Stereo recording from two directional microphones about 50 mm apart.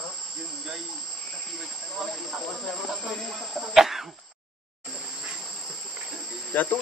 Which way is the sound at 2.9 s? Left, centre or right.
Centre.